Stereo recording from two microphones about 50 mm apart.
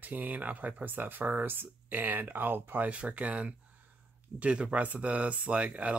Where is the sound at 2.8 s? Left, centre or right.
Right.